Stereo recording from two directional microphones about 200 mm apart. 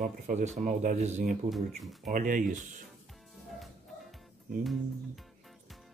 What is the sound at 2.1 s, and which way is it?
Speech, 40° right (ahead or behind).